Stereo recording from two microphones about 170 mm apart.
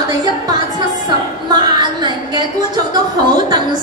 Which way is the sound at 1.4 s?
25° right (ahead or behind).